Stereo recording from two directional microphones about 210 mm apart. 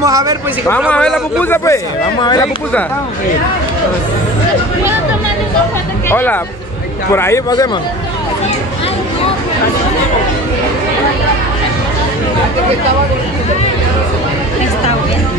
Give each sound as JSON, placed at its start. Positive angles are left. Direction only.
{"t": 0.0, "sound": "a man's voice", "side_deg": -15}
{"t": 0.7, "sound": "a man's voice", "side_deg": 5}
{"t": 6.0, "sound": "speech", "side_deg": 10}